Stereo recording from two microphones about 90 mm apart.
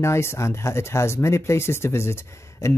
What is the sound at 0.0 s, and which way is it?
Speech, 30° left (ahead or behind).